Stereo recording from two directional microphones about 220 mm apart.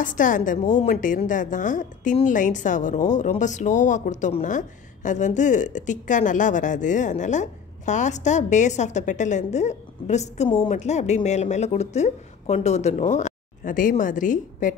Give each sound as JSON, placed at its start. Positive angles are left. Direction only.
{"t": 0.0, "sound": "a woman's voice", "side_deg": 35}